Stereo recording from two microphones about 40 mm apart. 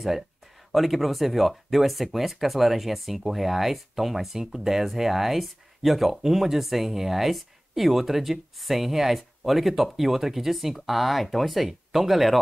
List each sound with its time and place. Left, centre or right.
0.7 s speech: centre